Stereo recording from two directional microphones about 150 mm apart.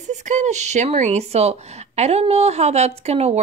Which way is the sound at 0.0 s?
55° right (ahead or behind).